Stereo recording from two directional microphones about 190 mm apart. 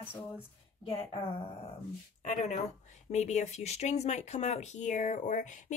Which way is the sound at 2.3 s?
40° left (ahead or behind).